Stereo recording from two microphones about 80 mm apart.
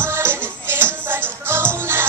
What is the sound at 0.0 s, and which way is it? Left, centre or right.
Music, right.